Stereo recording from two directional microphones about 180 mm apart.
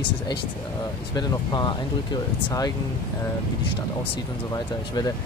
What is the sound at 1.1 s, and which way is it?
Speech, 20° left (ahead or behind).